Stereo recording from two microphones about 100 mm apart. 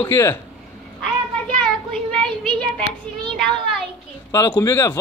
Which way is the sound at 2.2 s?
55° right (ahead or behind).